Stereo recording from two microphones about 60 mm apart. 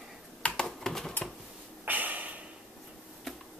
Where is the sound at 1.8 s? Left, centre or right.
Right.